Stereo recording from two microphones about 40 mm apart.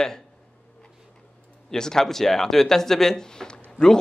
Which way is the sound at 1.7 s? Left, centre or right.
Centre.